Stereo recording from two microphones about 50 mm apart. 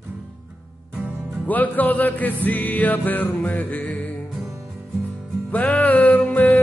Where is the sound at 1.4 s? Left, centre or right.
Left.